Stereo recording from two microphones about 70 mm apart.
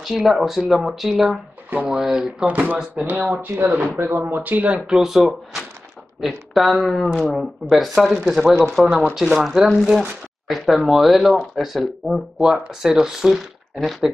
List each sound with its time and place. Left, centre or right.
0.0 s speech: centre
1.7 s speech: right
2.0 s speech: centre
2.4 s speech: right; by 14.1 s centre